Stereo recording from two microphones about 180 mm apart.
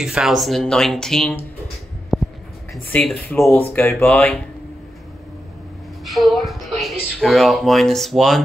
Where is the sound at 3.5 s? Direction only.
10° left (ahead or behind).